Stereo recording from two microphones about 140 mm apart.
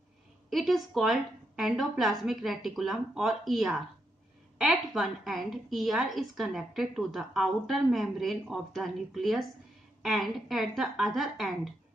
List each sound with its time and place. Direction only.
0.5 s a woman's voice: centre (ahead or behind)